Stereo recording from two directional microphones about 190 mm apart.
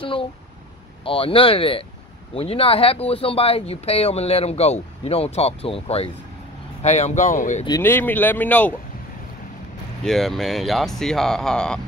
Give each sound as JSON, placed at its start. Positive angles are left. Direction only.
{"t": 0.0, "sound": "speech", "side_deg": 25}
{"t": 7.8, "sound": "speech", "side_deg": 10}
{"t": 10.0, "sound": "speech", "side_deg": 0}